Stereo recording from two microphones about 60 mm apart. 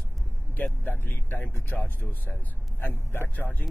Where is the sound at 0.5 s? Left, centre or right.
Left.